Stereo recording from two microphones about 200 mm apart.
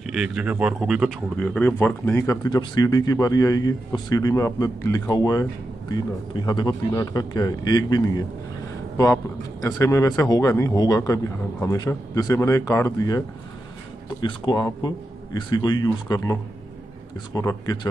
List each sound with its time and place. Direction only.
0.0 s speech: 5° right (ahead or behind); by 13.2 s 15° left (ahead or behind)
14.2 s speech: 25° left (ahead or behind)
17.4 s speech: 15° left (ahead or behind)